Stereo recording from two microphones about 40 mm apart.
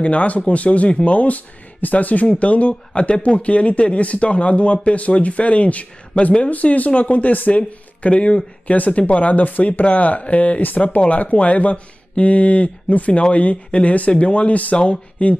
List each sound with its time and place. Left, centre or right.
0.0 s speech: left
10.6 s speech: left
11.0 s speech: left